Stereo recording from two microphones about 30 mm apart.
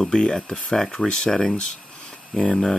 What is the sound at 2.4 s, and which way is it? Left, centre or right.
Speech, centre.